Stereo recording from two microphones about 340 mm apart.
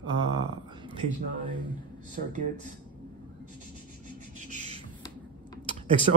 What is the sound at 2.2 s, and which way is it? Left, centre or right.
Speech, right.